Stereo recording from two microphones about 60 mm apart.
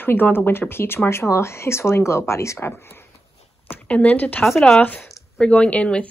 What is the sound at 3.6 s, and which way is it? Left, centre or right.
Speech, left.